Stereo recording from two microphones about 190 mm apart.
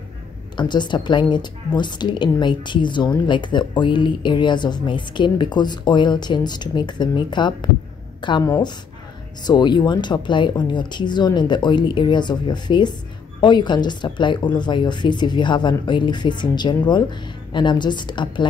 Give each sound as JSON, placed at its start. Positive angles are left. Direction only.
{"t": 0.6, "sound": "a woman's voice", "side_deg": 25}